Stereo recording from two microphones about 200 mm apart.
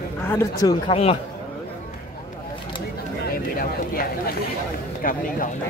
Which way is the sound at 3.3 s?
45° left (ahead or behind).